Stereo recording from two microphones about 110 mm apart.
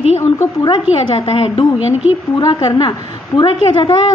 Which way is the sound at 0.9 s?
55° left (ahead or behind).